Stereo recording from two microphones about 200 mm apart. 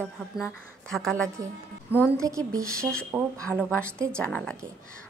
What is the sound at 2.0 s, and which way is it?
Speech, 15° right (ahead or behind).